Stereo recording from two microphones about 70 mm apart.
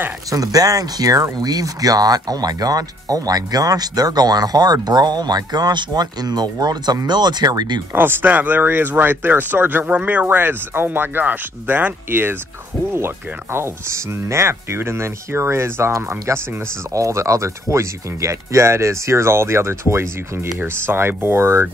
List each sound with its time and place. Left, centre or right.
0.3 s speech: right
4.8 s speech: right
7.9 s speech: right